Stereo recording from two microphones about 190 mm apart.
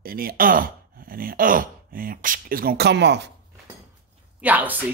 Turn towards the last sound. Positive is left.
turn(degrees=-10)  # may be behind; listen again after turning